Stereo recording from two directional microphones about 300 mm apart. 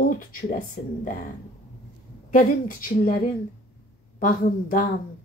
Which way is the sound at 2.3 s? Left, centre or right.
Left.